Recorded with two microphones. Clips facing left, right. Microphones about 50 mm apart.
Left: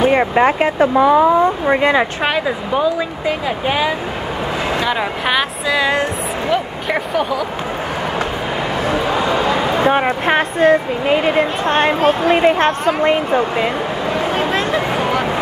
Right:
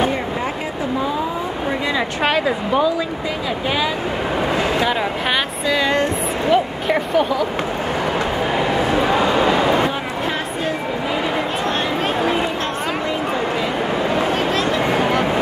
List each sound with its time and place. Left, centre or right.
0.1 s speech: left
1.7 s speech: left
2.2 s speech: centre
3.3 s speech: left
4.7 s speech: centre
9.8 s speech: left
13.0 s speech: left
14.5 s a sound: left